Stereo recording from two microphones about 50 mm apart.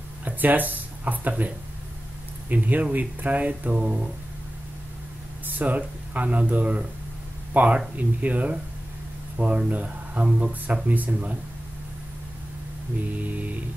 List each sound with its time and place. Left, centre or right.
0.2 s a sound: right
2.5 s speech: right
5.6 s speech: right
13.0 s speech: right